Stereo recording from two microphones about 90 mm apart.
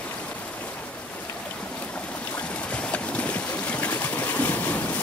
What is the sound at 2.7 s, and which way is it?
Boat, 15° left (ahead or behind).